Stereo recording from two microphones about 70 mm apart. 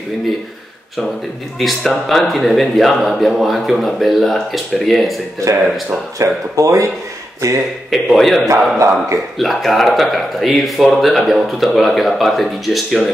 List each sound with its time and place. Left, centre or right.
1.6 s speech: centre
6.1 s speech: right
7.9 s speech: centre
8.5 s speech: right
9.4 s speech: centre